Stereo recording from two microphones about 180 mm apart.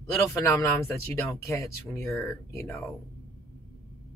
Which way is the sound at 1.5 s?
15° left (ahead or behind).